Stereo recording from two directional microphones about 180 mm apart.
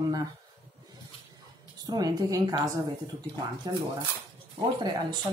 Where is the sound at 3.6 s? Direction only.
20° right (ahead or behind).